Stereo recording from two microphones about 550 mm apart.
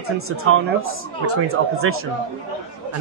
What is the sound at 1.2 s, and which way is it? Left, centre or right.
Speech, right.